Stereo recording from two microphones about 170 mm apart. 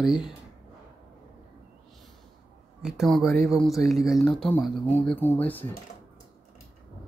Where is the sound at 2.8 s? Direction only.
Centre (ahead or behind).